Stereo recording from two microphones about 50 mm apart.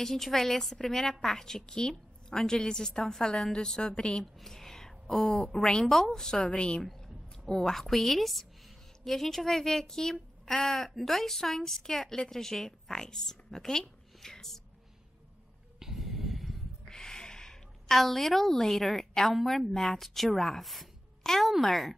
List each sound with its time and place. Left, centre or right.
0.0 s a woman's voice: centre
4.2 s a woman's voice: centre
15.8 s snort: centre
16.9 s a sound: centre
19.7 s a woman's voice: centre